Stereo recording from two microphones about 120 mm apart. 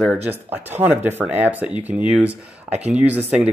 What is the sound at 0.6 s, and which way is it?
Speech, 15° right (ahead or behind).